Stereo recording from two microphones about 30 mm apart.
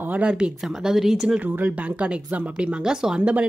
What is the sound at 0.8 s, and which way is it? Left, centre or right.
Speech, centre.